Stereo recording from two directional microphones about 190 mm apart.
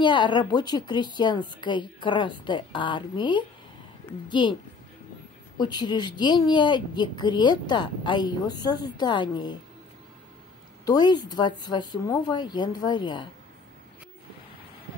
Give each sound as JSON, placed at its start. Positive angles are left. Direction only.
{"t": 0.0, "sound": "speech", "side_deg": 25}
{"t": 5.6, "sound": "speech", "side_deg": 25}
{"t": 10.9, "sound": "speech", "side_deg": 20}